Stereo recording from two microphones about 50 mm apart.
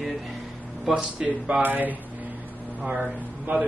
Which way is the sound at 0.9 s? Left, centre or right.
Right.